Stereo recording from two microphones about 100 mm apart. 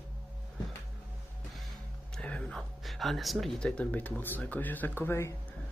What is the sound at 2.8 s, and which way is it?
Speech, centre (ahead or behind).